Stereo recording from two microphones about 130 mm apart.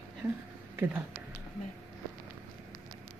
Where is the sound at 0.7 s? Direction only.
15° right (ahead or behind).